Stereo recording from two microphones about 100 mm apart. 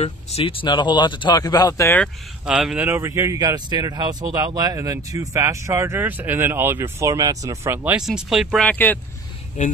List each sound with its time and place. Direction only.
0.0 s speech: 80° left; by 1.9 s 40° left (ahead or behind)
2.4 s speech: 10° right (ahead or behind)
2.8 s speech: 25° right (ahead or behind)
3.3 s speech: 45° right (ahead or behind)
7.6 s speech: 20° right (ahead or behind)
7.9 s speech: 5° right (ahead or behind)
8.5 s speech: 15° left (ahead or behind)